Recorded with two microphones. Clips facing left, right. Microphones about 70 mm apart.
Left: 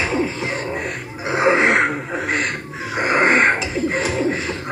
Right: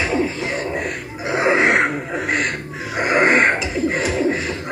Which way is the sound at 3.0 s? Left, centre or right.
Left.